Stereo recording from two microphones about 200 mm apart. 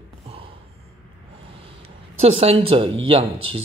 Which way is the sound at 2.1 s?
30° right (ahead or behind).